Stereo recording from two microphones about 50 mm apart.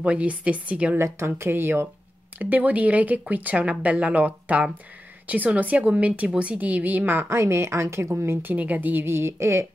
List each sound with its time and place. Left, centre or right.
0.0 s a woman's voice: right
0.9 s a woman's voice: right
2.3 s speech: right
6.6 s speech: right
7.3 s a woman's voice: right
8.5 s speech: right
9.0 s a woman's voice: right